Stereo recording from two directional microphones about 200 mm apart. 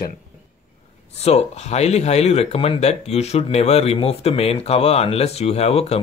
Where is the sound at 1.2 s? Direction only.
35° left (ahead or behind).